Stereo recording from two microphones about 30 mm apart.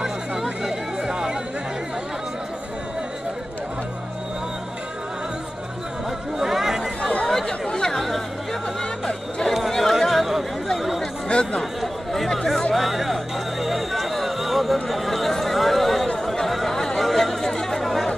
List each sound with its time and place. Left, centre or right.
0.0 s a sound: centre
6.3 s chatter: centre
7.0 s chatter: left
7.2 s chatter: centre
7.6 s chatter: left
7.9 s chatter: centre
9.7 s chatter: centre
11.2 s chatter: left
11.8 s chatter: centre
12.7 s a sound: centre
16.4 s chatter: centre
16.7 s a sound: centre
17.0 s chatter: centre